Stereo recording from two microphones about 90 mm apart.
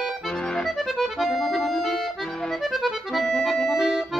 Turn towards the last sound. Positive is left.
turn(degrees=0)  # may be behind; listen again after turning